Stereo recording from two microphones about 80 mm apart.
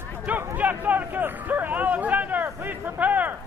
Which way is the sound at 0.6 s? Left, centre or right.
Right.